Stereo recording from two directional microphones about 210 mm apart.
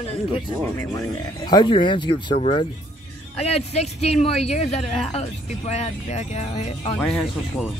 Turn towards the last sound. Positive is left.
turn(degrees=5)  # may be behind; listen again after turning